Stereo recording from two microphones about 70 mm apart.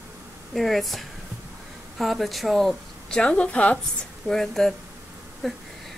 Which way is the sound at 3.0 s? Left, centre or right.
Centre.